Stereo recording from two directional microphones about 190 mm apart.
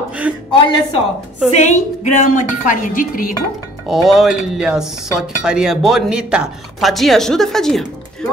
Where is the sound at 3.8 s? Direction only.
Centre (ahead or behind).